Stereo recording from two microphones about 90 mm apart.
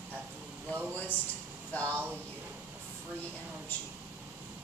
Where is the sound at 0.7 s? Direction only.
25° right (ahead or behind).